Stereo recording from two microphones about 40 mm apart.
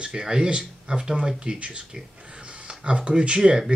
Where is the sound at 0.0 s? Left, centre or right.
Centre.